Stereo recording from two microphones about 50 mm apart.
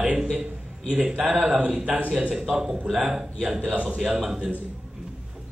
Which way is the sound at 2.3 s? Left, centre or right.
Centre.